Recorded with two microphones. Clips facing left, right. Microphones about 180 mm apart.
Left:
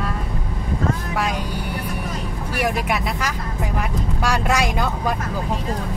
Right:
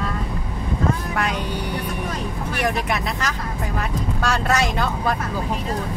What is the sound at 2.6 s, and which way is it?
Speech, 10° left (ahead or behind).